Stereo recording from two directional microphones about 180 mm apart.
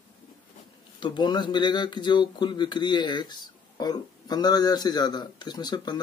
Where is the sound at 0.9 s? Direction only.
25° left (ahead or behind).